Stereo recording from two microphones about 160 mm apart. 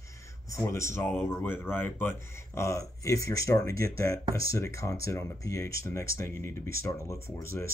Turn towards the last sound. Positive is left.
turn(degrees=15)  # may be behind; listen again after turning